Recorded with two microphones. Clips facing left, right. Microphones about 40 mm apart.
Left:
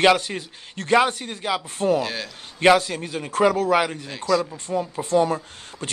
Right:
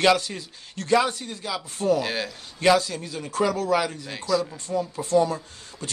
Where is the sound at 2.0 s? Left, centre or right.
Centre.